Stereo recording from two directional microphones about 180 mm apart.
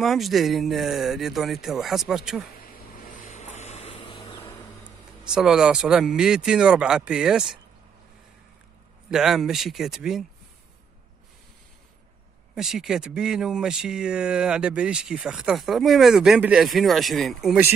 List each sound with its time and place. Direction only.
0.0 s speech: centre (ahead or behind)
2.5 s vehicle: 55° left (ahead or behind); by 4.6 s 25° left (ahead or behind)
5.3 s speech: 5° right (ahead or behind)
9.1 s speech: centre (ahead or behind)
12.5 s speech: 5° right (ahead or behind)